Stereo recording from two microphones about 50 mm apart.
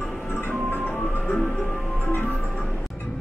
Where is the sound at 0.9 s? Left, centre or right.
Left.